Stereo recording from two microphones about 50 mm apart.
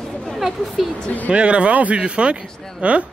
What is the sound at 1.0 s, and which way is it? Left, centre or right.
Speech, left.